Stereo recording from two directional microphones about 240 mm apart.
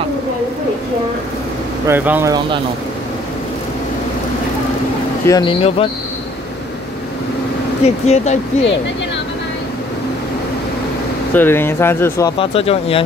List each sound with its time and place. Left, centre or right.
1.9 s speech: centre
5.2 s speech: centre
7.8 s speech: left
11.3 s speech: centre